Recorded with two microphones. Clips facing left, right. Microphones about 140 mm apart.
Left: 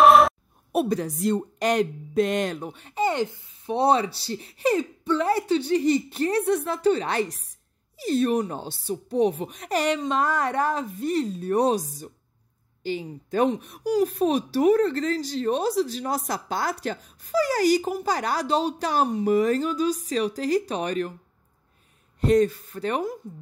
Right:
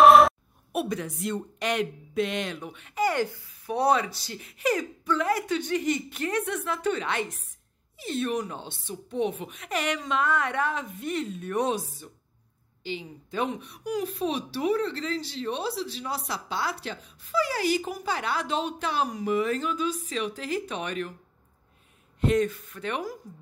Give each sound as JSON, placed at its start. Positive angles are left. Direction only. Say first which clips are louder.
{"t": 0.0, "sound": "a sound", "louder": "even", "side_deg": 0}
{"t": 0.7, "sound": "speech", "louder": "left 6 dB", "side_deg": 35}
{"t": 22.2, "sound": "speech", "louder": "left 4 dB", "side_deg": 35}